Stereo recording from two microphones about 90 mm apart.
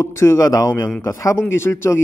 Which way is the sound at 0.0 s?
30° left (ahead or behind).